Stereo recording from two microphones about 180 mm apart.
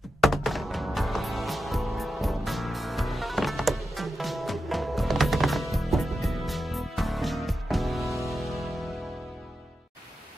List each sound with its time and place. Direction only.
0.2 s music: centre (ahead or behind)